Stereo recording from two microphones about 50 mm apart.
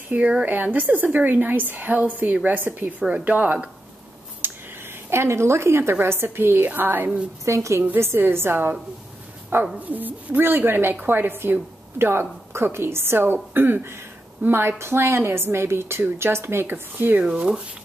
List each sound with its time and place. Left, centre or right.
0.1 s a woman's voice: right
3.0 s a woman's voice: right
4.4 s a sound: right
5.1 s a woman's voice: right
6.6 s a woman's voice: right
7.4 s a woman's voice: right
8.0 s speech: right
9.8 s a woman's voice: right
17.2 s speech: centre